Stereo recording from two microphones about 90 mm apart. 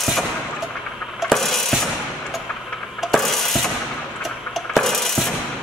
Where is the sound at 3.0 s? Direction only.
Centre (ahead or behind).